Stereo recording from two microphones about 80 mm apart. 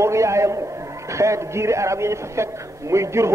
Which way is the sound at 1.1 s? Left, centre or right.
Right.